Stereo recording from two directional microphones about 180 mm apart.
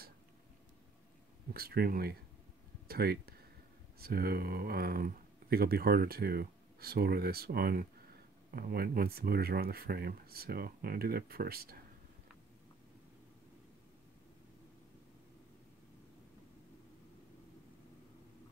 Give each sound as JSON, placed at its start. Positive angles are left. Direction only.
{"t": 1.5, "sound": "speech", "side_deg": -60}